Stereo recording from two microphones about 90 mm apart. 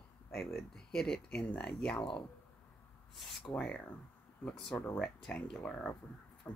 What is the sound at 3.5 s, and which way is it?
Speech, 10° left (ahead or behind).